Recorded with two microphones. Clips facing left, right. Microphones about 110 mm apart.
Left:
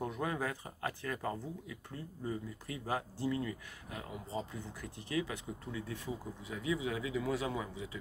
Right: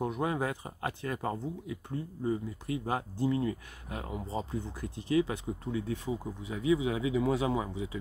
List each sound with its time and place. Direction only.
0.0 s speech: 20° right (ahead or behind)